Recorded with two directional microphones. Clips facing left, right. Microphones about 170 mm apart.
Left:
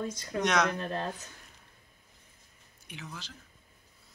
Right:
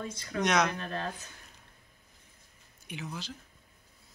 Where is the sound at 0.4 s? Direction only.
Centre (ahead or behind).